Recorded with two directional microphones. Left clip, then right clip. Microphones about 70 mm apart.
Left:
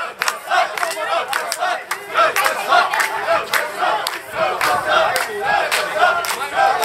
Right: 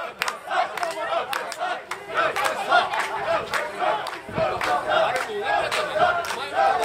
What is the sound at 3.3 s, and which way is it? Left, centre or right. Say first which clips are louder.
Crowd: left 6 dB; left.